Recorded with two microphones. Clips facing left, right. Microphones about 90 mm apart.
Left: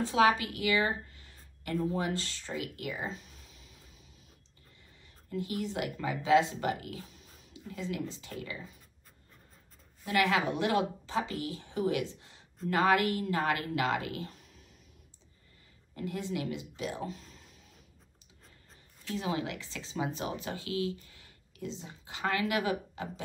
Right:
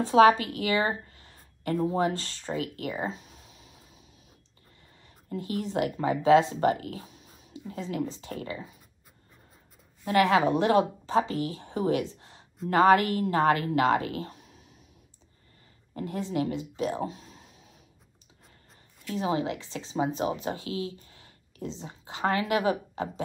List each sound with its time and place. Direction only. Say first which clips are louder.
0.0 s a woman's voice: right 7 dB; 40° right (ahead or behind)
5.3 s a woman's voice: right 4 dB; 40° right (ahead or behind)
10.0 s a woman's voice: right 6 dB; 40° right (ahead or behind)
15.9 s a woman's voice: right 4 dB; 40° right (ahead or behind)
19.1 s speech: right 6 dB; 30° right (ahead or behind)